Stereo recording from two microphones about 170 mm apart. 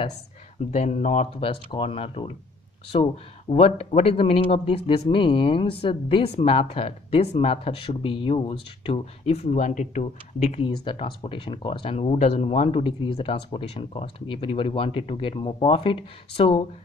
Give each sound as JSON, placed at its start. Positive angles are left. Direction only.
{"t": 0.7, "sound": "a man's voice", "side_deg": 40}